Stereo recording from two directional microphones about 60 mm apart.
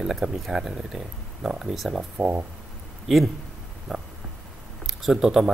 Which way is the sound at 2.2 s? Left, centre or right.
Right.